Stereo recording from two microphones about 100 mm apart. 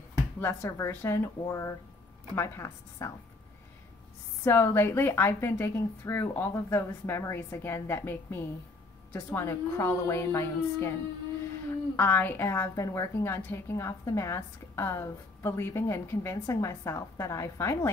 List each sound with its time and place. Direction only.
0.4 s a woman's voice: 25° left (ahead or behind)
4.5 s a woman's voice: 25° left (ahead or behind)
12.0 s a woman's voice: 20° left (ahead or behind)